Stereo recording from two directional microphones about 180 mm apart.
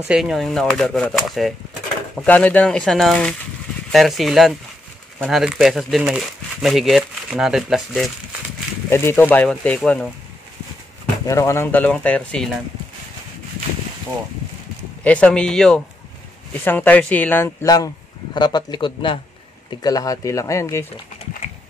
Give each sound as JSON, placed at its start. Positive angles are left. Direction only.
{"t": 0.1, "sound": "speech", "side_deg": 0}
{"t": 8.9, "sound": "speech", "side_deg": 10}
{"t": 11.2, "sound": "speech", "side_deg": 15}
{"t": 15.0, "sound": "speech", "side_deg": 5}